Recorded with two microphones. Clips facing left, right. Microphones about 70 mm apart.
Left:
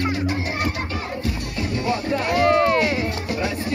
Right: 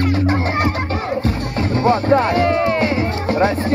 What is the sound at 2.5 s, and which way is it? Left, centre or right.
Music, centre.